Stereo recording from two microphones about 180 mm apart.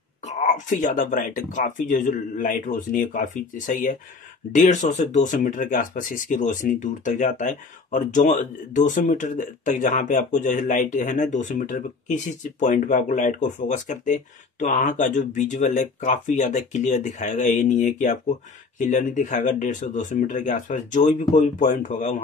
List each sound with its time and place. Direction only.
0.2 s speech: 40° left (ahead or behind)